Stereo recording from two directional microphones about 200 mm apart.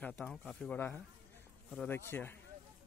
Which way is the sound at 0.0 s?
5° left (ahead or behind).